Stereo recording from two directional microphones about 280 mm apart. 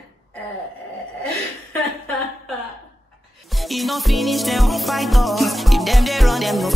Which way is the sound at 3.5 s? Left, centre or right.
Centre.